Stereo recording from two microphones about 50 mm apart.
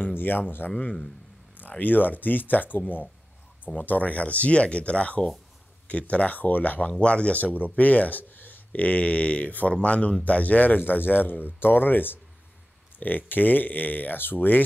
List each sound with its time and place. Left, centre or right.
0.0 s speech: left
0.7 s speech: left